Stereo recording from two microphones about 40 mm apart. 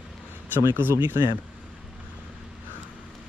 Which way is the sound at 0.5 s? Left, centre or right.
Right.